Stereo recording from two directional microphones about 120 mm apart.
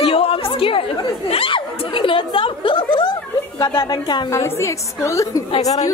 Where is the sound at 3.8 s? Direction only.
35° left (ahead or behind).